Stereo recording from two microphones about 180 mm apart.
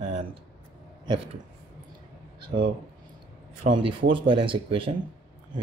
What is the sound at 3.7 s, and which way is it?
Speech, 30° right (ahead or behind).